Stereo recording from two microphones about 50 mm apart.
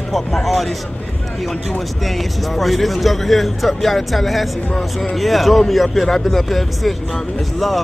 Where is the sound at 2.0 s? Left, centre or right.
Centre.